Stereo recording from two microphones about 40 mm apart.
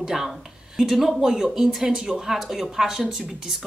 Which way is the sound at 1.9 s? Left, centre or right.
Centre.